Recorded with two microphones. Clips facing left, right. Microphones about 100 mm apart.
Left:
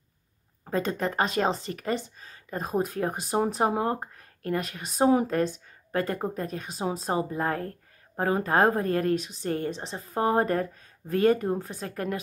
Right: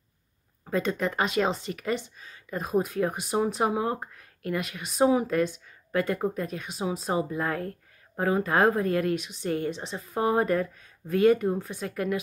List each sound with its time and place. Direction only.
0.7 s speech: 35° left (ahead or behind)